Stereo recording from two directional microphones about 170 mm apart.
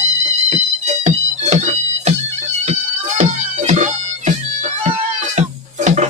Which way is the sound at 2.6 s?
40° right (ahead or behind).